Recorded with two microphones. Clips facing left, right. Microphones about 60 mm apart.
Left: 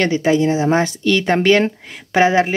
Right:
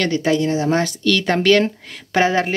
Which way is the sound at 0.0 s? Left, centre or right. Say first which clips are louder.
Left 3 dB; centre.